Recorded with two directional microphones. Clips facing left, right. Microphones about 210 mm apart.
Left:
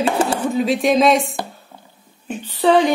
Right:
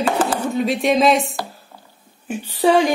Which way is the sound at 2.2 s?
10° right (ahead or behind).